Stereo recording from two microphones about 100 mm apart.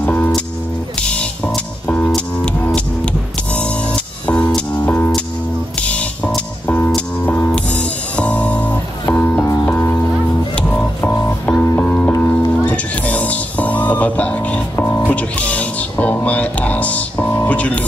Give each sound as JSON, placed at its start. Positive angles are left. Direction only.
{"t": 0.0, "sound": "music", "side_deg": 15}